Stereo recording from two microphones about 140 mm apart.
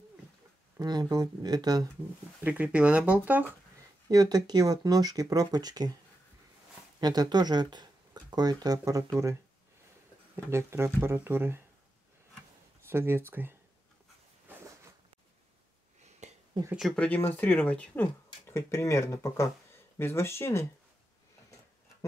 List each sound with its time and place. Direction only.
0.7 s speech: 30° right (ahead or behind)
2.4 s speech: 10° right (ahead or behind)
4.1 s speech: 30° right (ahead or behind)
7.0 s speech: 30° right (ahead or behind)
10.3 s speech: 20° right (ahead or behind)
12.9 s speech: 15° right (ahead or behind)
16.2 s a sound: 55° right (ahead or behind)
16.7 s speech: centre (ahead or behind); by 20.6 s 20° left (ahead or behind)